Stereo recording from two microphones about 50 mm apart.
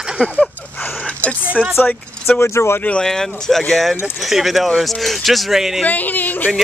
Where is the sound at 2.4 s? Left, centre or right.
Left.